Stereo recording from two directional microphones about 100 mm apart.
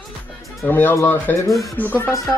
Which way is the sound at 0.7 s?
20° left (ahead or behind).